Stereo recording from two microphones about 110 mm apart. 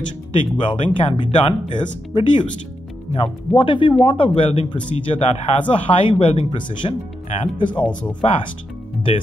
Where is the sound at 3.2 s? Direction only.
50° left (ahead or behind).